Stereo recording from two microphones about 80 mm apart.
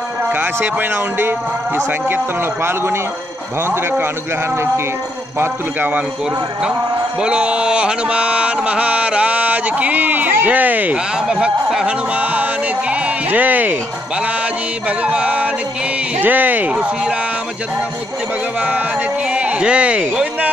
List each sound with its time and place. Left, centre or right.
0.3 s a man's voice: right
5.4 s a man's voice: right
7.2 s a sound: centre
12.9 s sheep: centre
14.9 s a sound: centre
16.2 s a man's voice: right
19.3 s speech: centre